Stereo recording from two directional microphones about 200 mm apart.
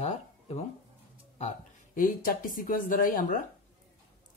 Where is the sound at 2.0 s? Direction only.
45° left (ahead or behind).